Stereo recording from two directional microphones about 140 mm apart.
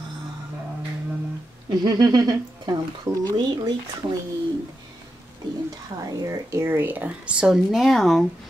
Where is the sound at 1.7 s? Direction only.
30° right (ahead or behind).